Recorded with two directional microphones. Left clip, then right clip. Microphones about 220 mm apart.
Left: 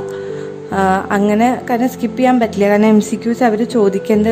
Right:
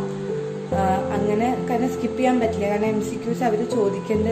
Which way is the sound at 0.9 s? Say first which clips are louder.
Left 9 dB; 45° left (ahead or behind).